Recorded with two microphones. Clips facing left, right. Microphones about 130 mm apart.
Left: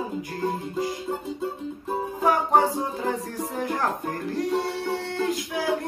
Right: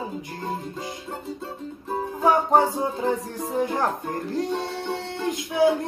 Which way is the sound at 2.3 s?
25° right (ahead or behind).